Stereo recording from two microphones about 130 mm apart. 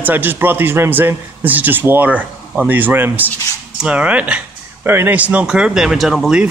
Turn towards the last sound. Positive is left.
turn(degrees=-5)  # may be behind; listen again after turning